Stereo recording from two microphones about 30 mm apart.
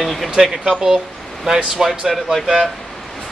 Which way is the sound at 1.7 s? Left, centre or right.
Centre.